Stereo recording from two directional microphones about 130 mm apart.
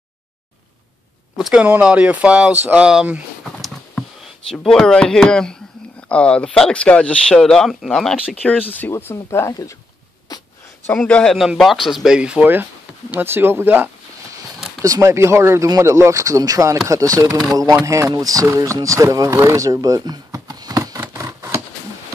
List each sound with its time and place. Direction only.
1.3 s speech: 5° right (ahead or behind)
3.5 s patter: centre (ahead or behind)
4.5 s speech: 5° left (ahead or behind)
8.7 s speech: 15° left (ahead or behind)
10.3 s a sound: 30° left (ahead or behind)
10.9 s speech: 10° left (ahead or behind); by 21.0 s 30° right (ahead or behind)
21.0 s a sound: 25° right (ahead or behind)